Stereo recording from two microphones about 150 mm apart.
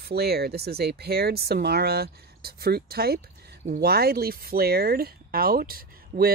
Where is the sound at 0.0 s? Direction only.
90° right.